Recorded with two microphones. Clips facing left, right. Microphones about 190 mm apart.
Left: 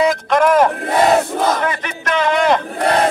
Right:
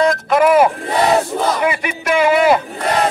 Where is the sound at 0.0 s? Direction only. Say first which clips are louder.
Right 1 dB; centre (ahead or behind).